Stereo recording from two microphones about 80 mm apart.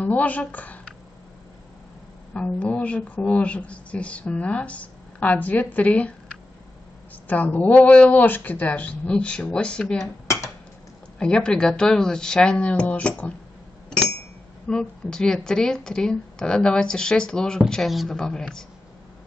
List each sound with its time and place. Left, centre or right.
0.0 s speech: centre
2.3 s a woman's voice: centre
7.2 s a woman's voice: centre
10.2 s dishes: left
11.1 s a woman's voice: centre
13.8 s a sound: centre
14.7 s a woman's voice: centre